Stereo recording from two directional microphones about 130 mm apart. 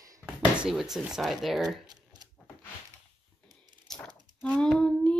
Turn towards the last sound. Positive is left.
turn(degrees=5)  # may be behind; listen again after turning